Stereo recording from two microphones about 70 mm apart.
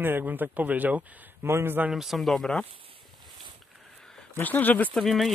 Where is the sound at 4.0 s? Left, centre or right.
Centre.